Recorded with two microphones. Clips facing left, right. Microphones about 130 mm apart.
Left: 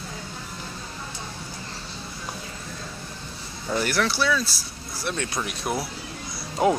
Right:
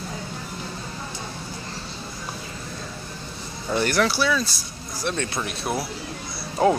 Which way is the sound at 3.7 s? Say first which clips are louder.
Right 3 dB; 5° left (ahead or behind).